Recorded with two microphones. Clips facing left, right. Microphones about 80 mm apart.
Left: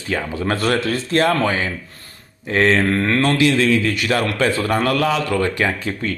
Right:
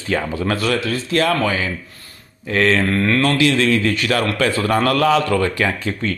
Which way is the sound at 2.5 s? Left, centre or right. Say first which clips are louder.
Left 1 dB; left.